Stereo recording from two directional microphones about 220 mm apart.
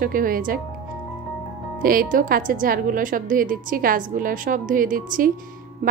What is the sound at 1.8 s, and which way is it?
A woman's voice, 40° right (ahead or behind).